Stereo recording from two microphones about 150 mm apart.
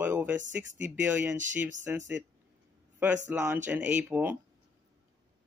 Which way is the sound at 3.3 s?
15° right (ahead or behind).